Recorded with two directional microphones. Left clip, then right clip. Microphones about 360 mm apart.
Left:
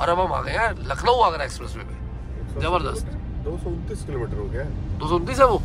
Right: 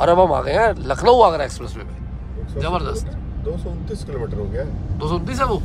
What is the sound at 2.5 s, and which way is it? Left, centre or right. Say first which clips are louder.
Speech: even; centre.